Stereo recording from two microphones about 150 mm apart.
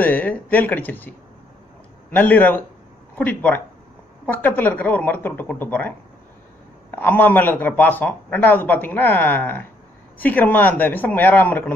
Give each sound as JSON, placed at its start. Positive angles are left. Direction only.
{"t": 0.0, "sound": "a man's voice", "side_deg": 10}
{"t": 7.0, "sound": "a man's voice", "side_deg": 10}